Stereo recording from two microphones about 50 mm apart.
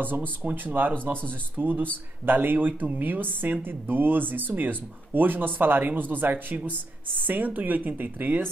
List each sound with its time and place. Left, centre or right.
0.4 s speech: right
6.3 s speech: right